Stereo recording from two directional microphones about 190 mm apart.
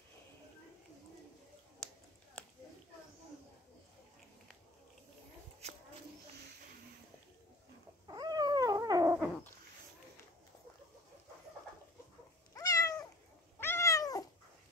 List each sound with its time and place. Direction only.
1.8 s finger snapping: 5° left (ahead or behind)
5.6 s a sound: 35° right (ahead or behind)
8.1 s cat: 20° right (ahead or behind)
12.5 s cat: 20° left (ahead or behind)